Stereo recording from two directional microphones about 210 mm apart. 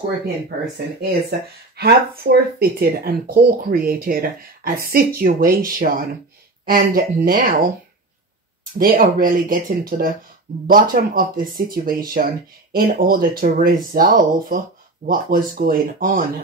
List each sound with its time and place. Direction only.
1.8 s speech: 45° right (ahead or behind)
8.7 s speech: 40° right (ahead or behind)